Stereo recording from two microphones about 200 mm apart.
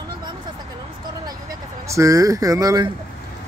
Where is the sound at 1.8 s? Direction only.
15° right (ahead or behind).